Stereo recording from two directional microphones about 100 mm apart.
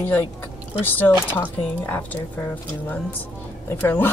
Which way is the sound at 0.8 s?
20° left (ahead or behind).